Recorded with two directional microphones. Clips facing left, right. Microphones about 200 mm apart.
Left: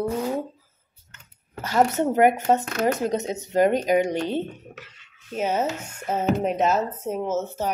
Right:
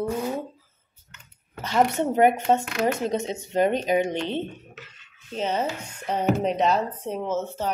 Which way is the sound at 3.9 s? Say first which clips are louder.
Left 2 dB; 25° right (ahead or behind).